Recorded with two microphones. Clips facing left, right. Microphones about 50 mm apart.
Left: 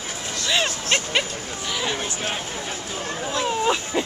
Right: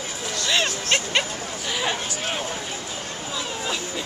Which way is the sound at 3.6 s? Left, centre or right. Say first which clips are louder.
Left 6 dB; left.